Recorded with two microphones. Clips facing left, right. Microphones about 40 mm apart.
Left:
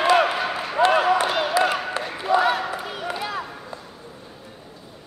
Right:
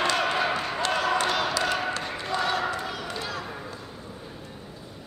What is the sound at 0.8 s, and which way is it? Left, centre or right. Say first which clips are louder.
Basketball bounce: left 12 dB; centre.